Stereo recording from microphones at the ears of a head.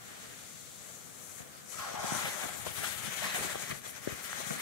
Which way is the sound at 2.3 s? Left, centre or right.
Left.